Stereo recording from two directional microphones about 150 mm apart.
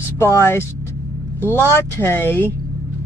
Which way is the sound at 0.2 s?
15° left (ahead or behind).